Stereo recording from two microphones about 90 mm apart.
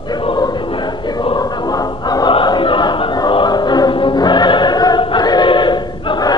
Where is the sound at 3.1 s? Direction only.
55° left (ahead or behind).